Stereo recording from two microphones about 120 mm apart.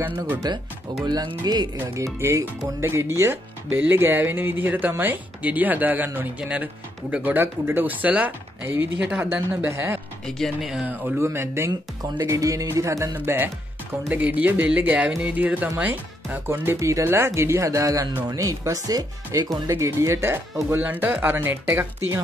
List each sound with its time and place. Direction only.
1.0 s music: 35° right (ahead or behind)
2.1 s speech: 20° right (ahead or behind)
10.2 s speech: 5° left (ahead or behind)
10.9 s speech: 20° right (ahead or behind)